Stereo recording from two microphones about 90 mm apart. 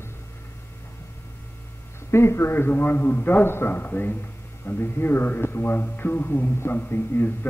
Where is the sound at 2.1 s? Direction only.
30° left (ahead or behind).